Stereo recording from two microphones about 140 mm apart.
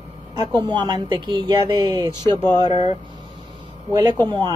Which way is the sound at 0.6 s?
30° right (ahead or behind).